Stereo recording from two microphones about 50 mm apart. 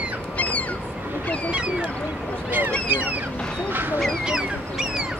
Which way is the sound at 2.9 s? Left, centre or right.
Right.